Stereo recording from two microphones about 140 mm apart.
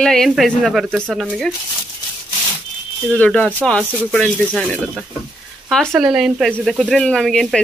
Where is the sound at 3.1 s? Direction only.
10° left (ahead or behind).